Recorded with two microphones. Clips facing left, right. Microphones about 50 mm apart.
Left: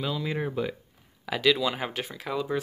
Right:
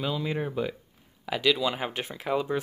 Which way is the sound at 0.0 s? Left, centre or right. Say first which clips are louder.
Even; centre.